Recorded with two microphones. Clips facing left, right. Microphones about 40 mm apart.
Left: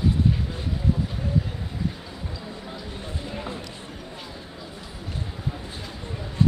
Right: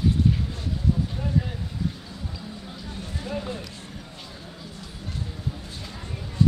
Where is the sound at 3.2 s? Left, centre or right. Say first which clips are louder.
Right 4 dB; left.